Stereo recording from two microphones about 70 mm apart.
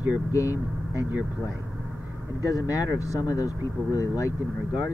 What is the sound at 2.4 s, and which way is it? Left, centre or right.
Speech, left.